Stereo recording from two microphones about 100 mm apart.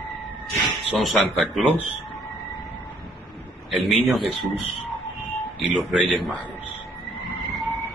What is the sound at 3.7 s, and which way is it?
Speech, centre (ahead or behind).